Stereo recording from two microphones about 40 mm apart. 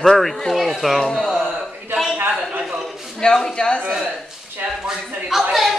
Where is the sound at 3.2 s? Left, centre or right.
Left.